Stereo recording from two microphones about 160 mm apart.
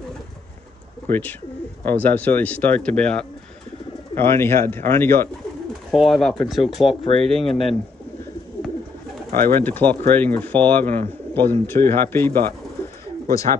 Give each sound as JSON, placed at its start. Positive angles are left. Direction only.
{"t": 1.0, "sound": "speech", "side_deg": 10}
{"t": 5.9, "sound": "speech", "side_deg": 0}
{"t": 7.4, "sound": "speech", "side_deg": 35}
{"t": 9.4, "sound": "speech", "side_deg": 15}